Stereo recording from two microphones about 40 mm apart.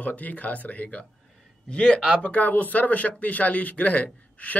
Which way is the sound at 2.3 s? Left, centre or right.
Left.